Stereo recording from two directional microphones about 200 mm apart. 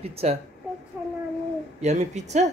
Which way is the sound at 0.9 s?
10° right (ahead or behind).